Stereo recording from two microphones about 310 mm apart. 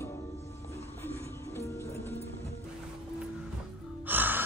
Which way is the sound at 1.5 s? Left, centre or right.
Centre.